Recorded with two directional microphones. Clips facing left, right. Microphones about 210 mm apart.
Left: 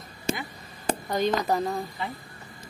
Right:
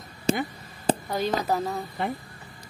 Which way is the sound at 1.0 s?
5° right (ahead or behind).